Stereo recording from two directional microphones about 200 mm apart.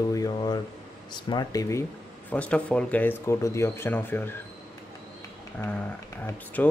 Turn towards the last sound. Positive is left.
turn(degrees=10)  # may be behind; listen again after turning